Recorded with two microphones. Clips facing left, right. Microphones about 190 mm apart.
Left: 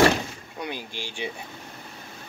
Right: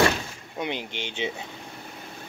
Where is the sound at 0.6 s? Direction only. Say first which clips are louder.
Right 3 dB; 20° right (ahead or behind).